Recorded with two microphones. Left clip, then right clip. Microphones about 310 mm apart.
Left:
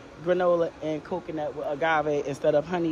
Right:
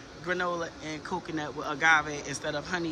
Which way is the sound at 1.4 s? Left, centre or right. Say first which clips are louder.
Even; centre.